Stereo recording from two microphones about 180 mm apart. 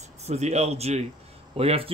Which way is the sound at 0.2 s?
35° right (ahead or behind).